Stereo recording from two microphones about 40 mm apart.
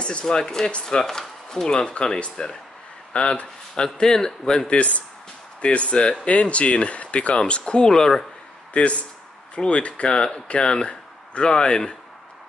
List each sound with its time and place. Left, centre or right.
0.2 s speech: centre
4.7 s speech: left; by 8.3 s centre
8.7 s speech: left